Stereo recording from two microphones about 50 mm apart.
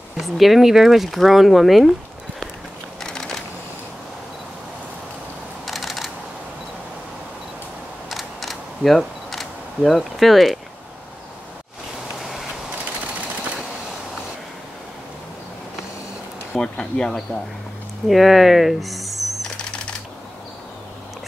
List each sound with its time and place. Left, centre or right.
0.2 s speech: centre
3.0 s typing: centre
5.7 s a sound: centre
8.1 s camera: centre
16.5 s speech: centre
18.0 s speech: centre